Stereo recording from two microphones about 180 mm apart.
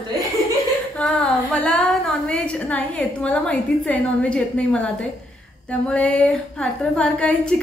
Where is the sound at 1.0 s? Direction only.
5° left (ahead or behind).